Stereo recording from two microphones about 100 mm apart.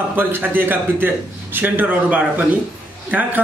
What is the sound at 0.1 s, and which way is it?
A man's voice, 20° right (ahead or behind).